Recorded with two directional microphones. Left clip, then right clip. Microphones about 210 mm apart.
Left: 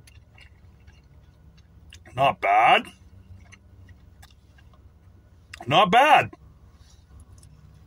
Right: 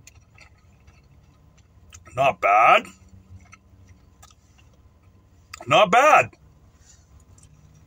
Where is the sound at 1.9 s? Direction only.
10° left (ahead or behind).